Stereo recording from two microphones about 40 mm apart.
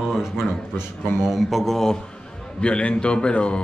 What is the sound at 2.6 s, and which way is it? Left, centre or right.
A man's voice, left.